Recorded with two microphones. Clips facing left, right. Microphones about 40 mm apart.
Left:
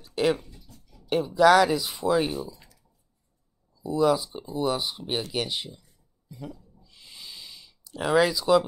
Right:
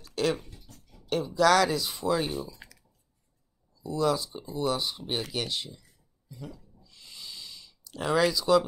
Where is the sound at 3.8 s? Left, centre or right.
Centre.